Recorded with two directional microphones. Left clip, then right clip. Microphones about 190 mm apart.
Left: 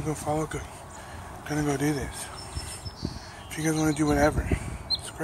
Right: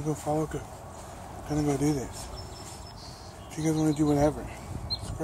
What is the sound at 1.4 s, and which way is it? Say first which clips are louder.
Speech: even; 5° right (ahead or behind).